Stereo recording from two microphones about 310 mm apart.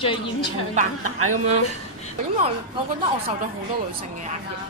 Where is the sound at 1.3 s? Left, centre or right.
Right.